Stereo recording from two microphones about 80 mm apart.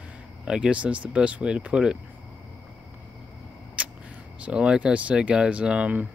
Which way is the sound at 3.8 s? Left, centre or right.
Centre.